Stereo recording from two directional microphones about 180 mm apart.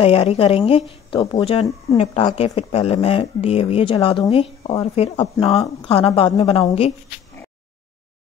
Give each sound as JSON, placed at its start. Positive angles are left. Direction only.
{"t": 0.0, "sound": "speech", "side_deg": 35}